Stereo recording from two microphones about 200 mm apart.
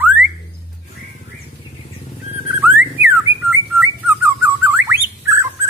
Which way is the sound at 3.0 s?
10° right (ahead or behind).